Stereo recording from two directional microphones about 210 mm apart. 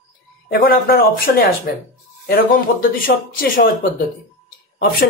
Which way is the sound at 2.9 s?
45° left (ahead or behind).